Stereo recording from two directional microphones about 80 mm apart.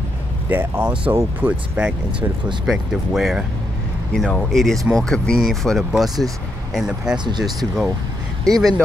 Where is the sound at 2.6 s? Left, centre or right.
Centre.